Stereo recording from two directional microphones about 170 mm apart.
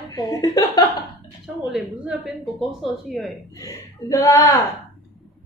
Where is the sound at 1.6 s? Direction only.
5° right (ahead or behind).